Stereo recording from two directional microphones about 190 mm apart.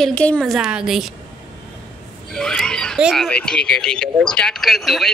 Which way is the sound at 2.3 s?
5° left (ahead or behind).